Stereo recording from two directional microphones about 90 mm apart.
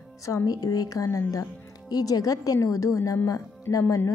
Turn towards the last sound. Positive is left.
turn(degrees=35)  # may be behind; listen again after turning